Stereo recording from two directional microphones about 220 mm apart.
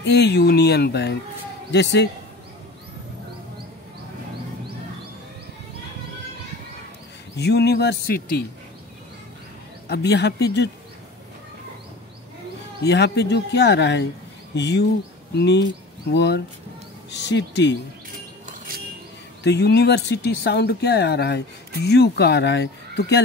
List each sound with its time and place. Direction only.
0.0 s speech: 50° left (ahead or behind)
7.3 s speech: 50° left (ahead or behind)
9.8 s speech: 50° left (ahead or behind)
12.8 s speech: 50° left (ahead or behind)
19.4 s speech: 50° left (ahead or behind)